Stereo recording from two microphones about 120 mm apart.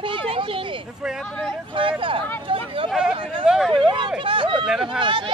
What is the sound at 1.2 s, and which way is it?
Speech, 5° left (ahead or behind).